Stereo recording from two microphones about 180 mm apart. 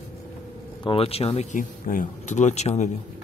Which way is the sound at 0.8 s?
30° left (ahead or behind).